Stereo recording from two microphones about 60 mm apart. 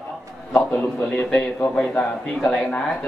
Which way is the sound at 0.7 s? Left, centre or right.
Left.